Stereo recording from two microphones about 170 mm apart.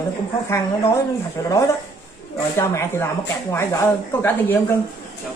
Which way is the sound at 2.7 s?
15° left (ahead or behind).